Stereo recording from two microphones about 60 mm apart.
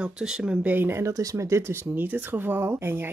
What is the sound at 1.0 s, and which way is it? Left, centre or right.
Speech, right.